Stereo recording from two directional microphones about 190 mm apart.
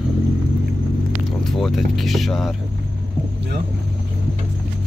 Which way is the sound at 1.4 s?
Centre (ahead or behind).